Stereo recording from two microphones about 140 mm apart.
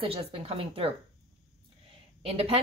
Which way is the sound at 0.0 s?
40° right (ahead or behind).